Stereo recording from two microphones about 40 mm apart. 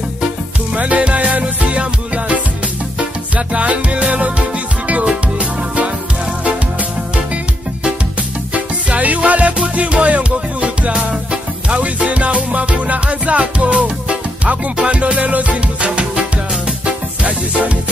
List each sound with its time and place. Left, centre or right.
0.7 s music: right
3.3 s music: right
8.5 s music: right